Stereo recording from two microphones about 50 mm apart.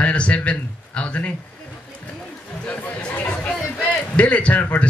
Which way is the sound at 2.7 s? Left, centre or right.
Left.